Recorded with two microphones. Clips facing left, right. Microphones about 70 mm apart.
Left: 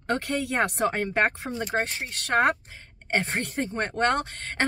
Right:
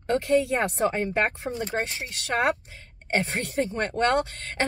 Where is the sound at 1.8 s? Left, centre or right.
Left.